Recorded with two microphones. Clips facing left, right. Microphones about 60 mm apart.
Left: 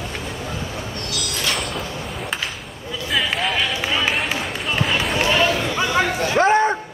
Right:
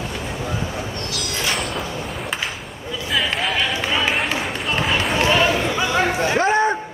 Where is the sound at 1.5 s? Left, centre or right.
Centre.